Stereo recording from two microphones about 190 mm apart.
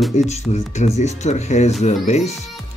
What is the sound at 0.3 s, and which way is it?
Speech, 35° left (ahead or behind).